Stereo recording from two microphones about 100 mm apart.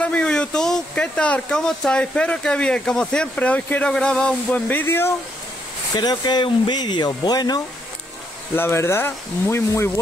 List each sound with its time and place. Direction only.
0.0 s speech: 10° left (ahead or behind)
4.6 s speech: 20° left (ahead or behind)
5.9 s speech: 45° left (ahead or behind)
8.5 s speech: 25° left (ahead or behind)